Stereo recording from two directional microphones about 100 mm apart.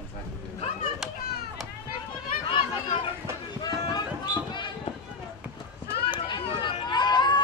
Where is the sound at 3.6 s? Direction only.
45° left (ahead or behind).